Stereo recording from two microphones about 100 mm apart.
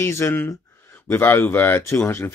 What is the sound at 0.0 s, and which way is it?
Speech, 25° left (ahead or behind).